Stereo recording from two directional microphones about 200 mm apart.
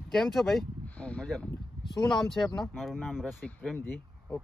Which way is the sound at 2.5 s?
Centre (ahead or behind).